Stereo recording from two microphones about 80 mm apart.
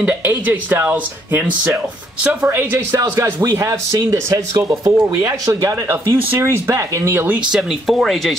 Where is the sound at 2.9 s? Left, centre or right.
Right.